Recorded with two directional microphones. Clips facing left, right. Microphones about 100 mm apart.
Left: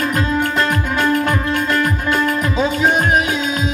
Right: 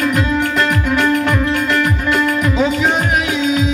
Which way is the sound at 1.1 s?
40° left (ahead or behind).